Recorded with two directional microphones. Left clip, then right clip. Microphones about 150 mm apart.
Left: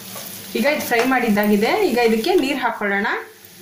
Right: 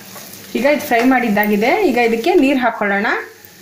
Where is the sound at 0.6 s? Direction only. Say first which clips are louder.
Right 4 dB; 45° right (ahead or behind).